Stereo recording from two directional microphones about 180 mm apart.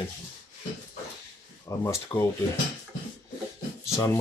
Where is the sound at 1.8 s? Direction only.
15° left (ahead or behind).